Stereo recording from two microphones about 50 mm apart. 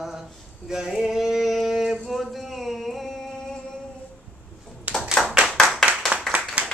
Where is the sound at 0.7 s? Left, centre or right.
Centre.